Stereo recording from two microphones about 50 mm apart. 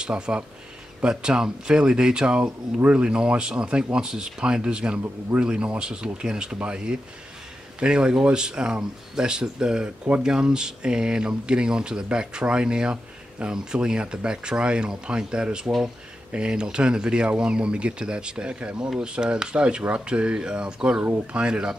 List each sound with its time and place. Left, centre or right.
0.0 s speech: right